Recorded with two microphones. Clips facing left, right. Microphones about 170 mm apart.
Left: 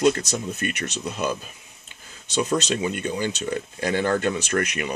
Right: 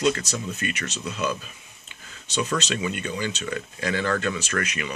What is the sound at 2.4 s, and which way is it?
Speech, 35° left (ahead or behind).